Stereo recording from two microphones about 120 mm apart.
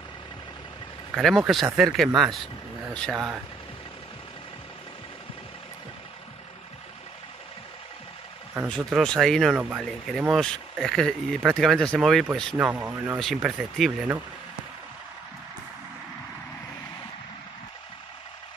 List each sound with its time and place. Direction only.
1.1 s speech: centre (ahead or behind)
8.6 s speech: 5° left (ahead or behind)
12.5 s speech: 15° right (ahead or behind)
13.2 s speech: centre (ahead or behind)